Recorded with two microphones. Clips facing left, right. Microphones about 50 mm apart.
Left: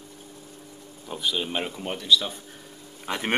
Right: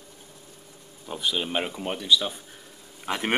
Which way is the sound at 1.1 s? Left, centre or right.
Centre.